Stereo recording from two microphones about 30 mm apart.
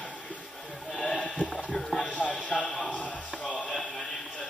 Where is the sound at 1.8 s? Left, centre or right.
Centre.